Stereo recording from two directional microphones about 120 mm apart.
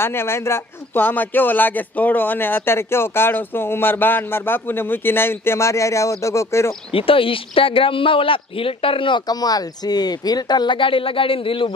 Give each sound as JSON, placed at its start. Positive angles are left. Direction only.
{"t": 0.0, "sound": "speech", "side_deg": 20}
{"t": 6.9, "sound": "speech", "side_deg": 50}